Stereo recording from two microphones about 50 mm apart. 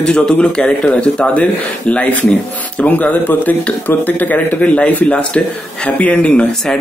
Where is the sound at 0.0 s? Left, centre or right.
Centre.